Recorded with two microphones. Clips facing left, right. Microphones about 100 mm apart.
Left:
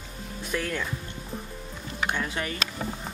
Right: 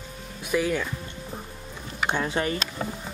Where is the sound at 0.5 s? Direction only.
10° right (ahead or behind).